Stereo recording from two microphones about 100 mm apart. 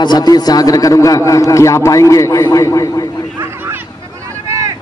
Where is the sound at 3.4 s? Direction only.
25° right (ahead or behind).